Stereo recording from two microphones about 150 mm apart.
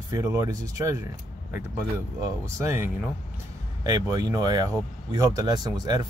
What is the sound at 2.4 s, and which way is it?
Speech, 15° right (ahead or behind).